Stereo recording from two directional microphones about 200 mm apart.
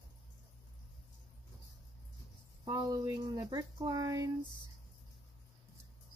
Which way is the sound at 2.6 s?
20° right (ahead or behind).